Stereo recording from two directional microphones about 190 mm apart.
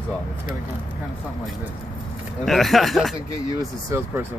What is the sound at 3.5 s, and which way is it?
Speech, 15° right (ahead or behind).